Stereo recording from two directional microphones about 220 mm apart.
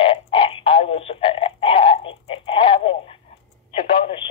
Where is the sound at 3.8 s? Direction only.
25° left (ahead or behind).